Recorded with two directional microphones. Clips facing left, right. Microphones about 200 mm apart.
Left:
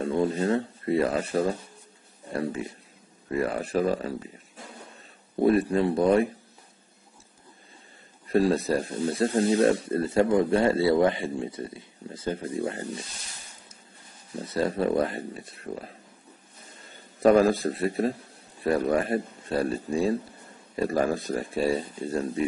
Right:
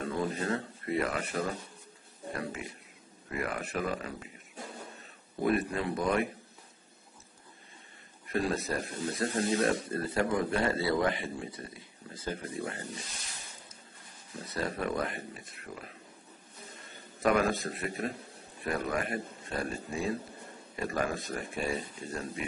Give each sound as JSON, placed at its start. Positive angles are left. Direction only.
{"t": 0.0, "sound": "speech", "side_deg": 30}
{"t": 5.4, "sound": "speech", "side_deg": 30}
{"t": 8.3, "sound": "speech", "side_deg": 30}
{"t": 14.4, "sound": "speech", "side_deg": 30}
{"t": 17.2, "sound": "speech", "side_deg": 30}